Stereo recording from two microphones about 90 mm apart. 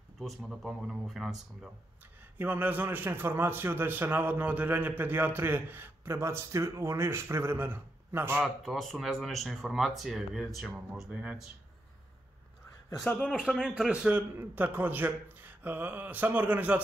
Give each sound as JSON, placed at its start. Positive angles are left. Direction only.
{"t": 0.2, "sound": "speech", "side_deg": 0}
{"t": 2.3, "sound": "a man's voice", "side_deg": -20}
{"t": 8.7, "sound": "speech", "side_deg": 0}
{"t": 13.2, "sound": "speech", "side_deg": -10}
{"t": 14.3, "sound": "a man's voice", "side_deg": -20}